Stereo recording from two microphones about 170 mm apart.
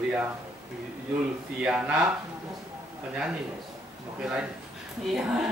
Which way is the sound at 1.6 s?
5° right (ahead or behind).